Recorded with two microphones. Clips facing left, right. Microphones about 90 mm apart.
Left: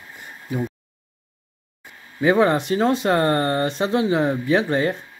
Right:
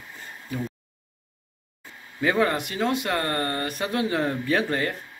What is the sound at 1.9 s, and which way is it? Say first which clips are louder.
Speech: left 6 dB; 20° left (ahead or behind).